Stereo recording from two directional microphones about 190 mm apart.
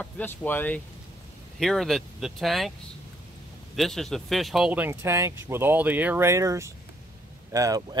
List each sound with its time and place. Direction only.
0.0 s speech: 10° left (ahead or behind)
3.7 s speech: centre (ahead or behind); by 8.0 s 20° right (ahead or behind)